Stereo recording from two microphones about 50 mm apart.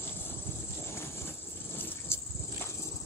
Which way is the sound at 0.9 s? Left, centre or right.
Left.